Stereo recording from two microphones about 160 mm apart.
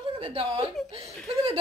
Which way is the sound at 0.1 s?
35° right (ahead or behind).